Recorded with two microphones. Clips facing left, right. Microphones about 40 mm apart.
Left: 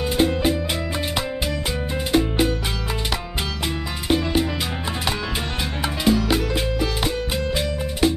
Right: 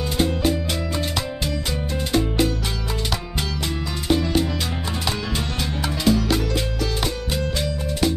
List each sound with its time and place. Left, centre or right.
0.2 s music: left
2.1 s music: centre
4.1 s music: centre
6.0 s music: centre